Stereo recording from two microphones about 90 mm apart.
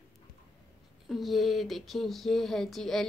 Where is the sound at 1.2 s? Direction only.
Centre (ahead or behind).